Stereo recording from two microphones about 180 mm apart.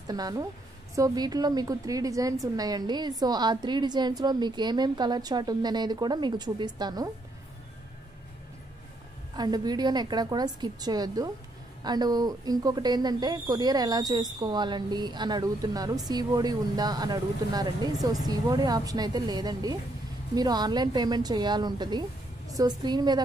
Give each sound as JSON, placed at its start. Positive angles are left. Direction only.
{"t": 0.0, "sound": "a woman's voice", "side_deg": -20}
{"t": 9.4, "sound": "speech", "side_deg": -20}